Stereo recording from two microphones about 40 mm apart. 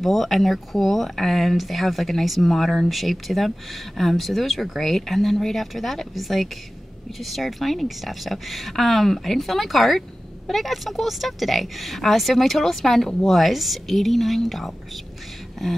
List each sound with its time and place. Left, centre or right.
0.0 s speech: centre